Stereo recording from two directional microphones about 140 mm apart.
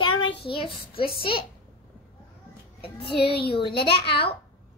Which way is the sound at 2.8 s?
40° left (ahead or behind).